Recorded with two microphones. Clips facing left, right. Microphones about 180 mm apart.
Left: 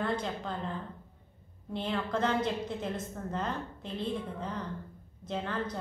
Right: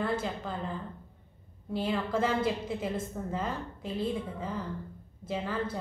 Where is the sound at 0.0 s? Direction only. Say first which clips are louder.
Right 1 dB; 5° right (ahead or behind).